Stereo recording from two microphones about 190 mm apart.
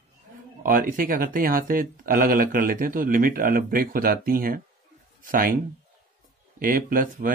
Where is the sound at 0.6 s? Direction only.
45° right (ahead or behind).